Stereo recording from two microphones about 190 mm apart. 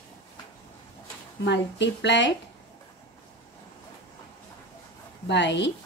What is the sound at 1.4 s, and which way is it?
Speech, 65° left (ahead or behind).